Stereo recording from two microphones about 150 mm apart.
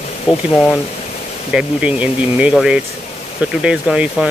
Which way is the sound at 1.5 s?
10° right (ahead or behind).